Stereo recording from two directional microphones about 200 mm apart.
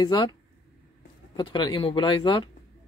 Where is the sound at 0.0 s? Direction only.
20° left (ahead or behind).